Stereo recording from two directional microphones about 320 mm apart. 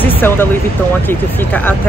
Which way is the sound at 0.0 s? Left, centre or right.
Centre.